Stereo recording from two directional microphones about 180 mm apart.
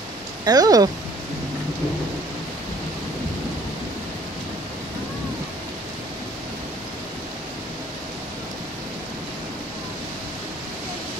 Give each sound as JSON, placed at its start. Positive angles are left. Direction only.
{"t": 0.5, "sound": "speech", "side_deg": -20}